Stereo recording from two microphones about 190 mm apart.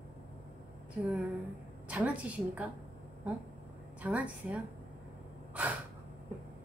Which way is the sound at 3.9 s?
5° right (ahead or behind).